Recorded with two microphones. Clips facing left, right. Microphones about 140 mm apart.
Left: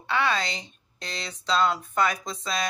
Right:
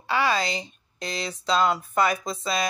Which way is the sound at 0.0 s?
5° right (ahead or behind).